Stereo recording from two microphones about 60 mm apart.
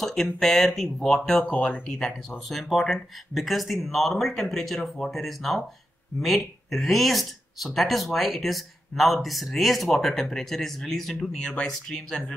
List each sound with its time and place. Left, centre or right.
0.0 s speech: centre
1.5 s speech: left
1.9 s speech: centre